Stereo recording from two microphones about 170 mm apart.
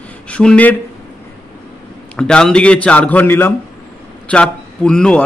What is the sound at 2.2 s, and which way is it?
A man's voice, 5° left (ahead or behind).